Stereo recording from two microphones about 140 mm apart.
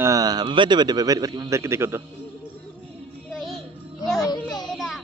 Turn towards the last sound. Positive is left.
turn(degrees=0)  # may be behind; listen again after turning